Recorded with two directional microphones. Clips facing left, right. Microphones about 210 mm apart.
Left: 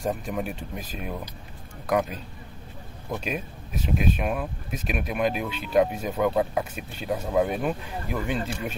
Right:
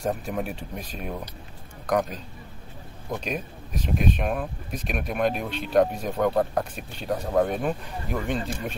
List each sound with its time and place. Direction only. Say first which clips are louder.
0.0 s speech: even; centre (ahead or behind)
3.3 s speech: even; 5° left (ahead or behind)